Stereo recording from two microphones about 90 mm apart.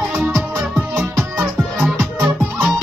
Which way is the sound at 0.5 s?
20° right (ahead or behind).